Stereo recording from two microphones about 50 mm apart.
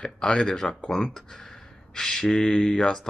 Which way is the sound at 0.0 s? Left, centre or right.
Centre.